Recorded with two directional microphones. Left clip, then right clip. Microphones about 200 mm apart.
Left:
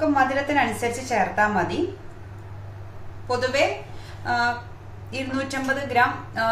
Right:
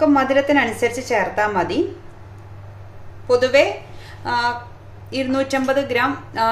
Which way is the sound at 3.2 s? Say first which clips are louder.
Right 9 dB; 50° right (ahead or behind).